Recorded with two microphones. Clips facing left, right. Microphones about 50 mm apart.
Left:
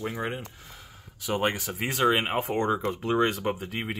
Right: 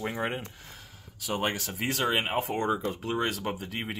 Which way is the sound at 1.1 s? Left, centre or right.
Left.